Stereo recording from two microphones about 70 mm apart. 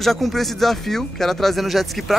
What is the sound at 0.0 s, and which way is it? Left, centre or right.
Speech, centre.